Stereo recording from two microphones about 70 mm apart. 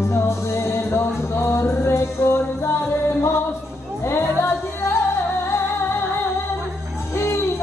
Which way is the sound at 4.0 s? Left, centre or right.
Left.